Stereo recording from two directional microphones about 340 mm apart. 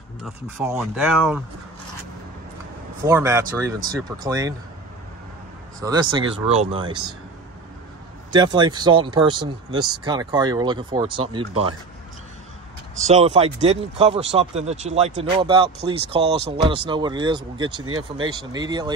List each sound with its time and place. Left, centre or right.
0.2 s speech: centre
3.0 s speech: centre
5.8 s speech: centre
8.3 s speech: centre
13.1 s speech: centre
17.8 s speech: right
18.2 s speech: centre